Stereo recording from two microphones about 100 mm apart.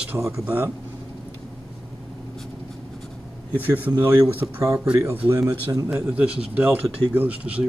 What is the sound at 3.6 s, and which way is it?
Speech, 20° right (ahead or behind).